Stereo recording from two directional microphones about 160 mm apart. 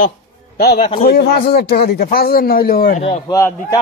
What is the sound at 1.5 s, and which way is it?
A man's voice, 90° left.